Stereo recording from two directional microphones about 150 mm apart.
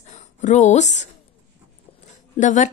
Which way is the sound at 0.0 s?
50° left (ahead or behind).